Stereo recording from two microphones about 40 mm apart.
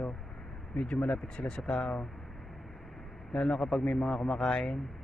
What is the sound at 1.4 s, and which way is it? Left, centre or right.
Speech, left.